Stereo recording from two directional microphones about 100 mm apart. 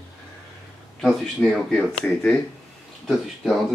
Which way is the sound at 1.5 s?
5° left (ahead or behind).